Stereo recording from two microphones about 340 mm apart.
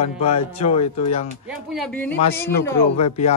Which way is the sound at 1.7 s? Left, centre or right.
Centre.